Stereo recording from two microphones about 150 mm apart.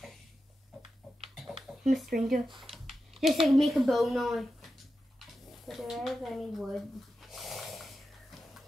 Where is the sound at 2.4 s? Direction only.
35° right (ahead or behind).